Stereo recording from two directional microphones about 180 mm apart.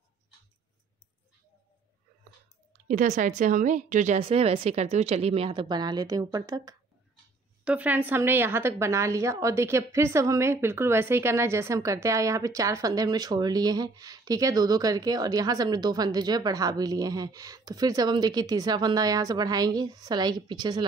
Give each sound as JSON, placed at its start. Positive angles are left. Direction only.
{"t": 2.9, "sound": "speech", "side_deg": -45}
{"t": 7.6, "sound": "a woman's voice", "side_deg": -10}